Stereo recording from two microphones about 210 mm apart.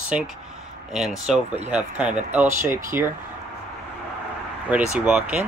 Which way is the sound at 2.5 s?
35° right (ahead or behind).